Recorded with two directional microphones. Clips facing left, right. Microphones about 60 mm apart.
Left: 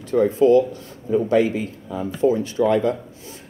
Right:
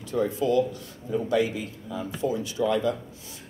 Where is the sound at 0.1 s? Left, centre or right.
Left.